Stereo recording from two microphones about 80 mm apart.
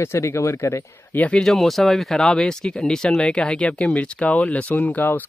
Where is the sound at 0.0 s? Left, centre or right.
Left.